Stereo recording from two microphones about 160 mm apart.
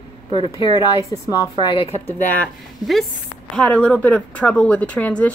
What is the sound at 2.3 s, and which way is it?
Speech, centre (ahead or behind).